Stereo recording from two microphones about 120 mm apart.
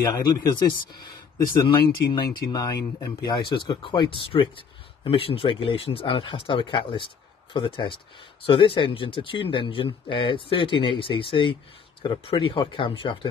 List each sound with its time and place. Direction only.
0.1 s speech: 35° left (ahead or behind)
1.7 s speech: 40° left (ahead or behind)